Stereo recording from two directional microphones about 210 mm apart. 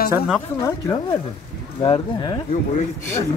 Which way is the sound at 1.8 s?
25° left (ahead or behind).